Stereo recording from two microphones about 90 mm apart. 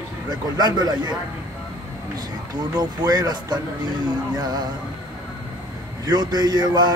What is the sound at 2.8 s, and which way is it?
Speech, 50° right (ahead or behind).